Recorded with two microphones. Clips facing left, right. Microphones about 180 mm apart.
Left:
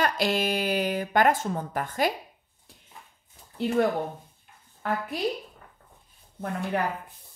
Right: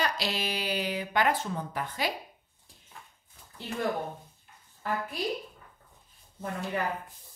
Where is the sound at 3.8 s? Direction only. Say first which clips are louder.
Left 6 dB; 65° left (ahead or behind).